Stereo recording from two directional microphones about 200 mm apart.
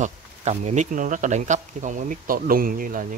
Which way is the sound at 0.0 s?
35° right (ahead or behind).